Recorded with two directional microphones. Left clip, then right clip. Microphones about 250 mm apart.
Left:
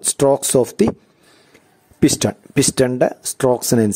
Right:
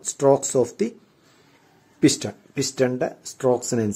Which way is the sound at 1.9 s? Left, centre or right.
Left.